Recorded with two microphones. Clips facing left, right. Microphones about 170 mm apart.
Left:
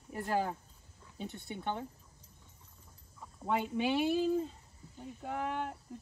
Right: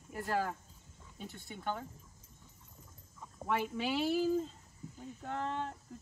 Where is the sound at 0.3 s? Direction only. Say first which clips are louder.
Left 2 dB; 20° left (ahead or behind).